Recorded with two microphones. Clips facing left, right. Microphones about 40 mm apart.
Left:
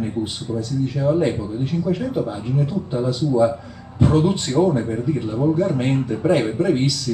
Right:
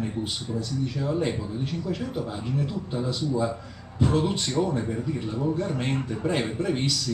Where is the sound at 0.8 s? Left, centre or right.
Centre.